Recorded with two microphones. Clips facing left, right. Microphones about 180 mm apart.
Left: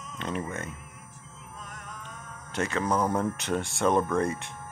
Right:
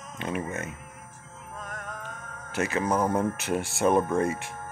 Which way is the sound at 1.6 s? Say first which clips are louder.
Right 6 dB; 50° right (ahead or behind).